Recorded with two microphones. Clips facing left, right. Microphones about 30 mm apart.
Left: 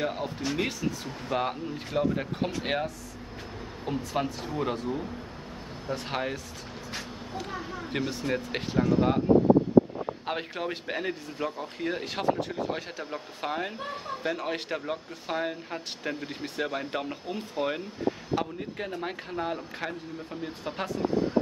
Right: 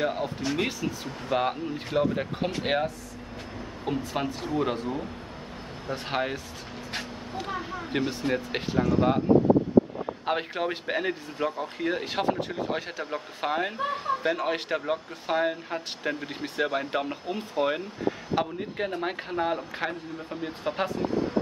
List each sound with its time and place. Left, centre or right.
0.0 s a man's voice: centre
10.2 s a man's voice: centre